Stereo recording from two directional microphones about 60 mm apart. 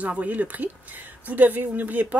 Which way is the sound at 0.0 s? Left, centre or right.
Right.